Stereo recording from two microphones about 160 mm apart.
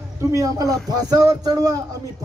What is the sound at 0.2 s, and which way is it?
Speech, 20° right (ahead or behind).